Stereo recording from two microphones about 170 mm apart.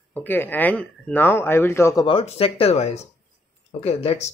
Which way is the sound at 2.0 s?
35° left (ahead or behind).